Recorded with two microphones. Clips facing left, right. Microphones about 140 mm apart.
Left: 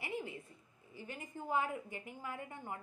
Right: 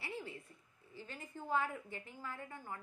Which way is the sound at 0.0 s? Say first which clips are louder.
Left 4 dB; 20° left (ahead or behind).